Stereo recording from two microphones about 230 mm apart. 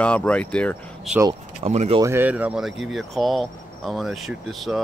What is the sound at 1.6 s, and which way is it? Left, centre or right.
Speech, right.